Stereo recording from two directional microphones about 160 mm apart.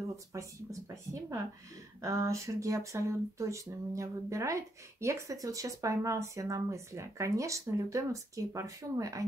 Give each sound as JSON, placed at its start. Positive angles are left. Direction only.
{"t": 0.3, "sound": "speech", "side_deg": -20}